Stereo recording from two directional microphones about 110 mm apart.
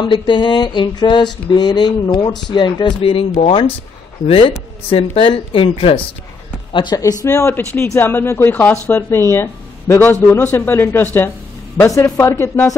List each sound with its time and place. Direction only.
0.0 s a sound: 50° left (ahead or behind)
3.3 s speech: 60° left (ahead or behind)
6.7 s speech: 45° left (ahead or behind)
7.2 s speech: 25° left (ahead or behind)